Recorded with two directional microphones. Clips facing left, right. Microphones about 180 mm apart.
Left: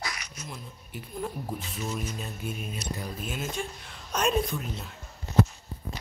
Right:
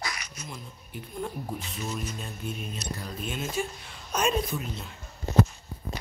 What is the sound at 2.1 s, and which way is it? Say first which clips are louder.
Speech: even; 5° left (ahead or behind).